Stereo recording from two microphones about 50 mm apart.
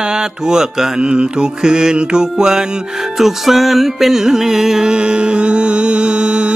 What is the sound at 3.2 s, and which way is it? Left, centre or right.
Music, centre.